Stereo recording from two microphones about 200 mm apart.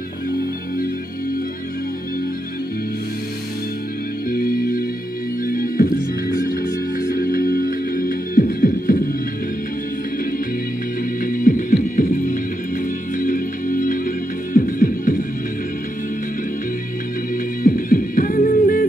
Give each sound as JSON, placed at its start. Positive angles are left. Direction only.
{"t": 4.3, "sound": "music", "side_deg": 45}
{"t": 11.2, "sound": "music", "side_deg": 45}
{"t": 17.6, "sound": "music", "side_deg": 45}